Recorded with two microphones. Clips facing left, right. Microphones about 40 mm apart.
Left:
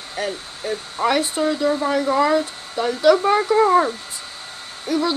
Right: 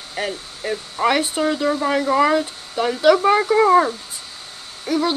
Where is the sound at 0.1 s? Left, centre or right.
Right.